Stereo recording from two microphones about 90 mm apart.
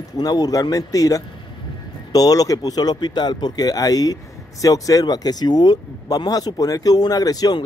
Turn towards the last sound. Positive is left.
turn(degrees=45)  # may be behind; listen again after turning